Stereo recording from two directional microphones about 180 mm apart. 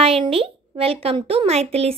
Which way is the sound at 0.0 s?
35° right (ahead or behind).